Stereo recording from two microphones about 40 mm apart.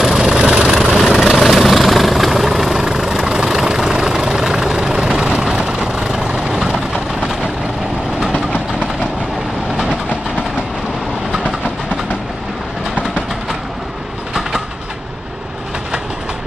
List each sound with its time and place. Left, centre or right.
0.0 s vehicle: centre
0.7 s vehicle: centre; by 6.6 s right